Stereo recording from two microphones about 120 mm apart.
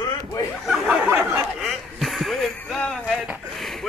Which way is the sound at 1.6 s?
Centre (ahead or behind).